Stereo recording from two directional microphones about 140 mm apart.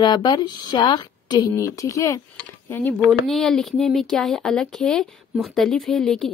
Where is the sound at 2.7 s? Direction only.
15° left (ahead or behind).